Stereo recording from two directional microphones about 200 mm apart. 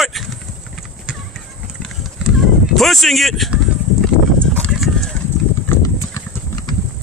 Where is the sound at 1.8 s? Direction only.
Centre (ahead or behind).